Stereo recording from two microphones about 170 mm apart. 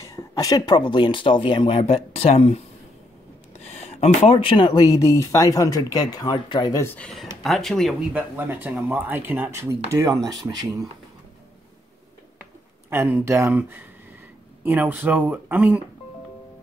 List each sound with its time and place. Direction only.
0.1 s speech: 20° left (ahead or behind); by 2.6 s 35° left (ahead or behind)
3.6 s speech: 35° left (ahead or behind); by 7.9 s centre (ahead or behind)
8.1 s speech: 10° right (ahead or behind)
12.9 s speech: 15° right (ahead or behind)